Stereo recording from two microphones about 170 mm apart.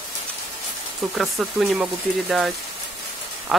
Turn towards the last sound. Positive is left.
turn(degrees=0)  # may be behind; listen again after turning